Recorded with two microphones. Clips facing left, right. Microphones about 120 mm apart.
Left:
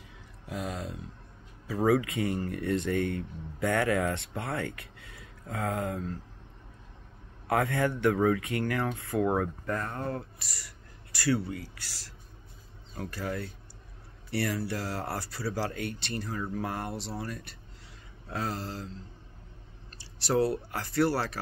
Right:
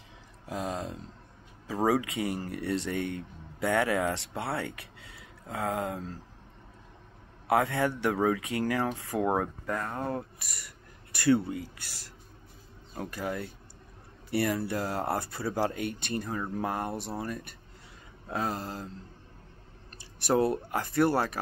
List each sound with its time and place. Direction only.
0.5 s speech: 35° right (ahead or behind)
1.9 s speech: 20° right (ahead or behind)
7.4 s speech: 20° right (ahead or behind)
9.8 s speech: 10° right (ahead or behind)
18.3 s speech: 20° right (ahead or behind)
20.2 s speech: 20° right (ahead or behind)